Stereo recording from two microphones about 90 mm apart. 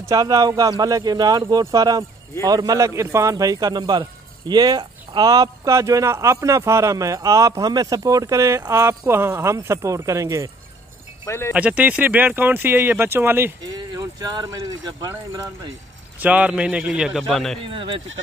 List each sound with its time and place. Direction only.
0.0 s a man's voice: 40° right (ahead or behind)
11.2 s speech: 30° left (ahead or behind)
11.5 s speech: 15° right (ahead or behind)
13.7 s speech: 45° right (ahead or behind)
16.2 s a man's voice: 15° right (ahead or behind)
17.6 s speech: 75° right (ahead or behind)